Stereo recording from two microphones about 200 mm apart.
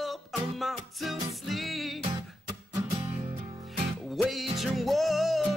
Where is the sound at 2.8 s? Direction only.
20° right (ahead or behind).